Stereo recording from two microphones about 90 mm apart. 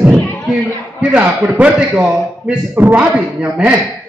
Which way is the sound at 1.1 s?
15° right (ahead or behind).